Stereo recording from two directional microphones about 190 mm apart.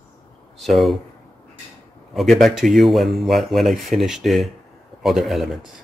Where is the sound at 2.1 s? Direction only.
Centre (ahead or behind).